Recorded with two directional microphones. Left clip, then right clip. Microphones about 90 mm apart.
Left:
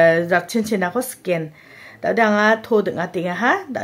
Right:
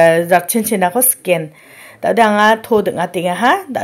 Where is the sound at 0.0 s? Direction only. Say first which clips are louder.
Right 5 dB; 25° right (ahead or behind).